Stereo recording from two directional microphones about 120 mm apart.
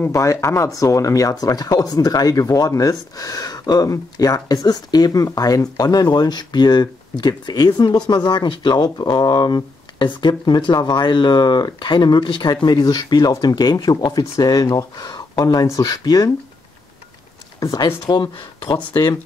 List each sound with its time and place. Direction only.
0.0 s speech: 25° left (ahead or behind)
17.6 s speech: 35° left (ahead or behind)